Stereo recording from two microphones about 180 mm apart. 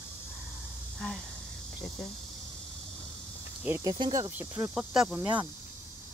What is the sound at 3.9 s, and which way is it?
Speech, 25° right (ahead or behind).